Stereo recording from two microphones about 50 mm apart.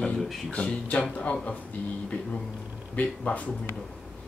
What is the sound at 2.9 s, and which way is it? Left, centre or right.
Speech, left.